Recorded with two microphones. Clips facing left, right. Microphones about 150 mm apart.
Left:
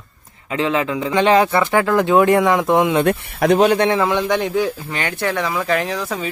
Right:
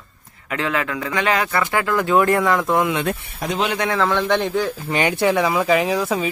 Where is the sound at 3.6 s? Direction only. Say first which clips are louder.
Left 6 dB; 40° left (ahead or behind).